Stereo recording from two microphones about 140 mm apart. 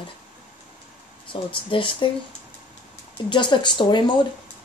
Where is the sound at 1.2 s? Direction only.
35° left (ahead or behind).